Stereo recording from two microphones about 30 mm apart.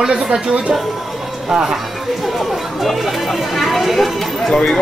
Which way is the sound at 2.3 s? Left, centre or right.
Centre.